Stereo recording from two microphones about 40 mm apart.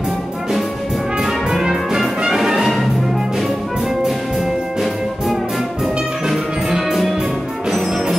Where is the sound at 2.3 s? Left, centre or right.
Centre.